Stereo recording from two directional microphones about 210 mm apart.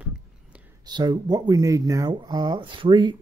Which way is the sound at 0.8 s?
20° right (ahead or behind).